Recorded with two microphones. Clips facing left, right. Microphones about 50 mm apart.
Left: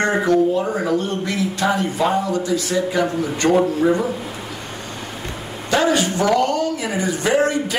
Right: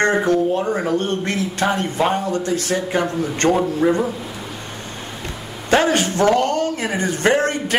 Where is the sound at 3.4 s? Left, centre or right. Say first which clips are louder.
Left 1 dB; centre.